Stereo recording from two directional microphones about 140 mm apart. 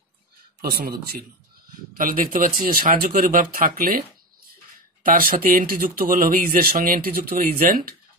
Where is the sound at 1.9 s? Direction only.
80° right.